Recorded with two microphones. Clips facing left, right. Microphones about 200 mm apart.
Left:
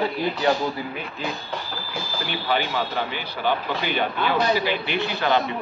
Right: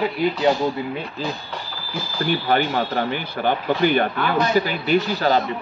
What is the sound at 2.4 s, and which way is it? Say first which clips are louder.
Speech: right 1 dB; 50° right (ahead or behind).